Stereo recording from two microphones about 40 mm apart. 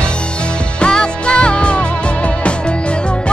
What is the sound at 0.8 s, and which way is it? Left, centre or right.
Music, left.